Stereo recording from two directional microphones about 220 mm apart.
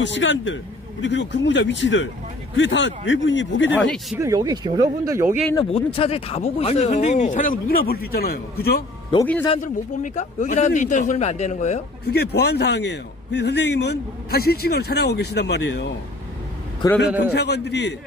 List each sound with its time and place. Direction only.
0.0 s a man's voice: 55° left (ahead or behind)
3.8 s speech: centre (ahead or behind)
4.2 s speech: 15° right (ahead or behind)
5.6 s speech: 25° left (ahead or behind); by 8.8 s 45° left (ahead or behind)
9.2 s speech: 10° left (ahead or behind)
10.0 s speech: 35° left (ahead or behind)
12.0 s a man's voice: 45° left (ahead or behind)
16.8 s speech: 15° left (ahead or behind)
17.3 s a man's voice: 50° left (ahead or behind)